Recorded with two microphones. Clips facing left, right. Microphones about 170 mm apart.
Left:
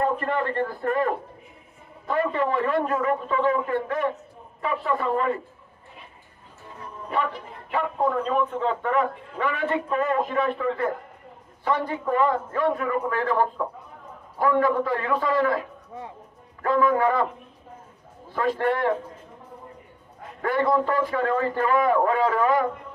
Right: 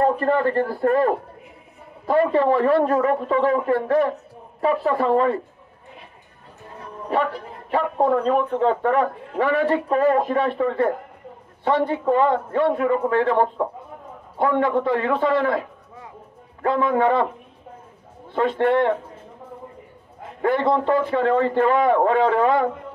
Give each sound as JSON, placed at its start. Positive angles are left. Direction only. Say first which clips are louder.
{"t": 0.0, "sound": "a man's voice", "louder": "right 6 dB", "side_deg": -35}
{"t": 7.7, "sound": "a man's voice", "louder": "right 5 dB", "side_deg": -35}
{"t": 16.6, "sound": "a man's voice", "louder": "right 2 dB", "side_deg": -30}
{"t": 18.3, "sound": "a man's voice", "louder": "right 5 dB", "side_deg": -25}
{"t": 20.4, "sound": "a man's voice", "louder": "right 3 dB", "side_deg": -25}